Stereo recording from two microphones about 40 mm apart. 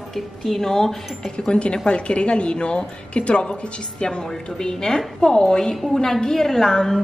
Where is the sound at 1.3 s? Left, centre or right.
Left.